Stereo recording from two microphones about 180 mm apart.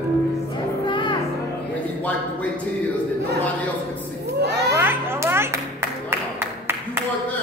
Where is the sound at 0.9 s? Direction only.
25° left (ahead or behind).